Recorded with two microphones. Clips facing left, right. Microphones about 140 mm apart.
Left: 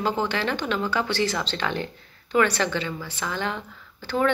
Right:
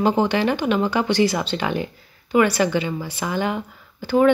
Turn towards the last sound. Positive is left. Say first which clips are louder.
# right 7 dB
turn(degrees=-15)  # may be behind; listen again after turning